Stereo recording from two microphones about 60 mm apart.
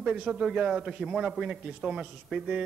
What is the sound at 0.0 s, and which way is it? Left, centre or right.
Speech, centre.